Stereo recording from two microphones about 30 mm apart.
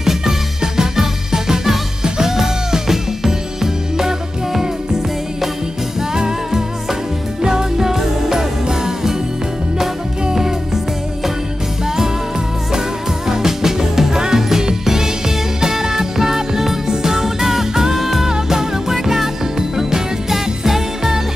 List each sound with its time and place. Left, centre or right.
0.0 s music: centre
10.3 s music: centre
13.3 s music: centre